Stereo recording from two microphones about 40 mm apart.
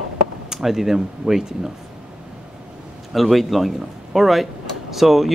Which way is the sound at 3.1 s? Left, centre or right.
Centre.